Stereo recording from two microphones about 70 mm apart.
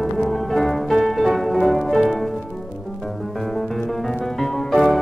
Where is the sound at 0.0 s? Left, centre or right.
Centre.